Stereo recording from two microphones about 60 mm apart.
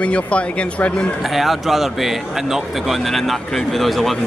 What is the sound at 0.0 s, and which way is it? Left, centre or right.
Speech, centre.